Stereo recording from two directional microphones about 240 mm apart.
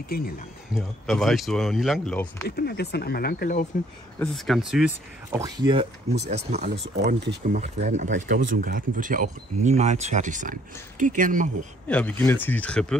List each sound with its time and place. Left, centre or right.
0.7 s speech: centre
2.4 s speech: left
4.2 s speech: centre
5.4 s speech: centre
7.0 s speech: right
11.9 s speech: centre